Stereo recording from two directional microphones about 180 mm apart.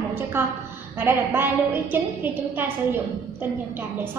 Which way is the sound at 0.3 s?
10° right (ahead or behind).